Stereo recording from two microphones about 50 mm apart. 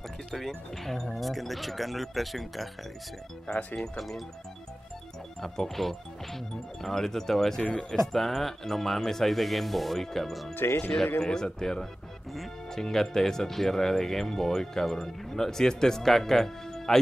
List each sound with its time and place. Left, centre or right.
0.3 s speech: centre
3.7 s speech: centre
5.4 s speech: centre
7.6 s speech: centre
8.1 s speech: centre
10.5 s speech: left
11.1 s speech: centre